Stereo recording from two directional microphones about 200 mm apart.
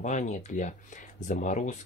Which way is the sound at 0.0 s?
35° left (ahead or behind).